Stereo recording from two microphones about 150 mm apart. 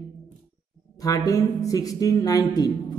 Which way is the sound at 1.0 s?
25° left (ahead or behind).